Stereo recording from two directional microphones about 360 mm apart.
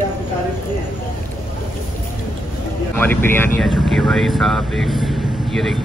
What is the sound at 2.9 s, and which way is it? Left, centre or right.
Speech, centre.